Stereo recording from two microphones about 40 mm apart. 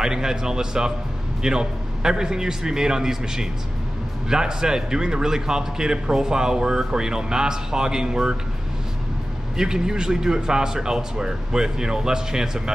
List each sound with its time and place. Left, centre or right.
0.0 s a man's voice: centre
9.6 s a man's voice: centre